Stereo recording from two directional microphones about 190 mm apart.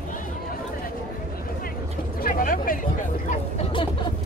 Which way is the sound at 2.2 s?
45° left (ahead or behind).